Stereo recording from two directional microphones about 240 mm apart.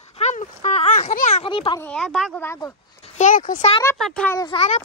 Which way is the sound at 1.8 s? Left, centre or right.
Centre.